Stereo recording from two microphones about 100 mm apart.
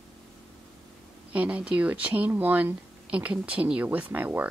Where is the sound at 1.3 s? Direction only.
15° right (ahead or behind).